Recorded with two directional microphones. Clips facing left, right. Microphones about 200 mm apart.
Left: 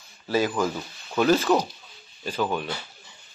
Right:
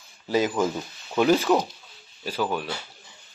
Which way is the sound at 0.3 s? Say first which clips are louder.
Right 1 dB; 20° right (ahead or behind).